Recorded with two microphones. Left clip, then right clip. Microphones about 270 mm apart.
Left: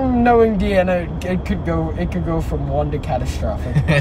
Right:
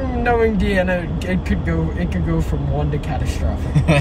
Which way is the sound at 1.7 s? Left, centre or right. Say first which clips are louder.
Left 4 dB; left.